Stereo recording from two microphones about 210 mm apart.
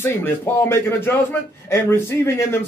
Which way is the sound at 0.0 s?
10° left (ahead or behind).